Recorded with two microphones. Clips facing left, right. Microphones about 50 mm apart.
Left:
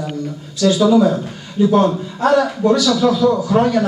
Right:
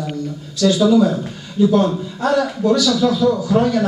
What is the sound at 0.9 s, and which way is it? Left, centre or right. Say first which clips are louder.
Speech: left 1 dB; left.